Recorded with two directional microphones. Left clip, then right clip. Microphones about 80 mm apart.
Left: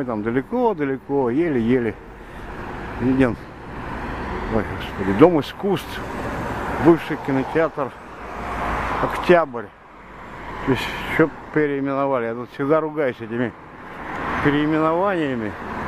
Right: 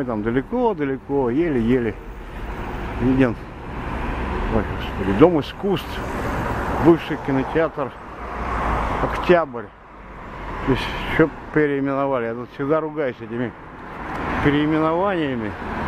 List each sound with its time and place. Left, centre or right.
0.0 s speech: centre
2.6 s vehicle: centre
5.1 s vehicle: left
7.2 s speech: left
7.5 s speech: left
8.4 s vehicle: left
8.6 s a sound: left
9.1 s speech: left
11.5 s speech: centre
12.1 s speech: left
14.4 s speech: centre